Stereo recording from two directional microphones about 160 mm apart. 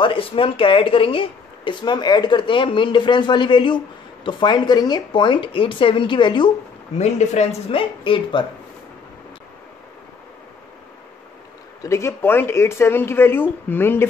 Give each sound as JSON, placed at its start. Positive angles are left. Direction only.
{"t": 0.0, "sound": "speech", "side_deg": 35}
{"t": 7.0, "sound": "a woman's voice", "side_deg": 45}
{"t": 8.0, "sound": "speech", "side_deg": 30}
{"t": 11.8, "sound": "speech", "side_deg": 15}